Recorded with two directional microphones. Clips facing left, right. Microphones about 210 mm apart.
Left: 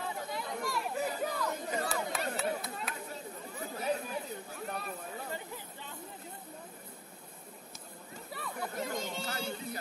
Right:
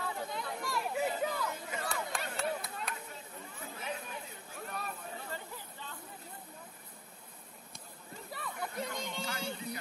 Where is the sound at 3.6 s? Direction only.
40° left (ahead or behind).